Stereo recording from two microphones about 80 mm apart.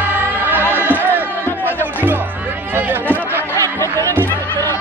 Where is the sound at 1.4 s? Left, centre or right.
Left.